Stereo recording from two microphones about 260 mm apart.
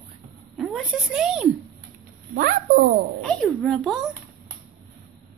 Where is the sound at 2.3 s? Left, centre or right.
Right.